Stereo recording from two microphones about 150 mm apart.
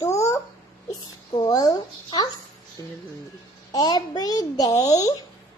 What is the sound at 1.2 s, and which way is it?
A child's voice, 30° left (ahead or behind).